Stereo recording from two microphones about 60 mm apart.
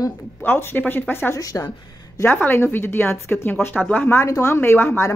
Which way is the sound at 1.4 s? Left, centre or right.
Left.